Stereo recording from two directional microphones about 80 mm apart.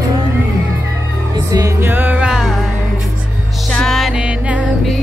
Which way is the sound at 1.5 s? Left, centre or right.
Right.